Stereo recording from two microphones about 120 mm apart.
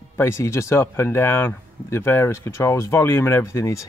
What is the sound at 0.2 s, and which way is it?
Speech, 20° left (ahead or behind).